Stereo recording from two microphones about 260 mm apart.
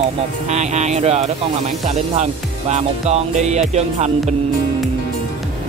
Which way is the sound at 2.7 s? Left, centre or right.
Right.